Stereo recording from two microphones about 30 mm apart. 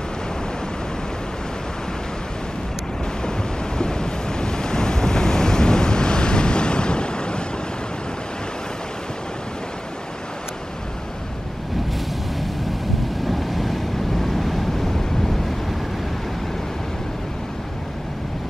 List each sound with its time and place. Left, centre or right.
3.3 s waves: left
13.3 s vehicle: centre